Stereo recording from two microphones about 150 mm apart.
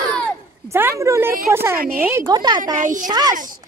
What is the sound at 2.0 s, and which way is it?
Speech, 15° right (ahead or behind).